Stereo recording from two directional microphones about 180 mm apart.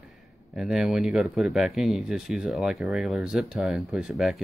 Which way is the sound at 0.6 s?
Centre (ahead or behind).